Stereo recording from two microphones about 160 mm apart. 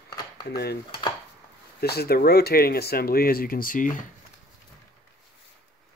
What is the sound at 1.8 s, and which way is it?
Speech, 80° left.